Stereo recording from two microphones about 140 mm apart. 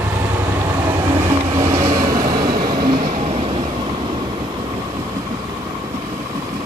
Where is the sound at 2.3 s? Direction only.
90° right.